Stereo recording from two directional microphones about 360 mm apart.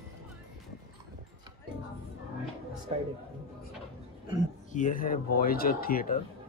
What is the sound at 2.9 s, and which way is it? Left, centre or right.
Speech, centre.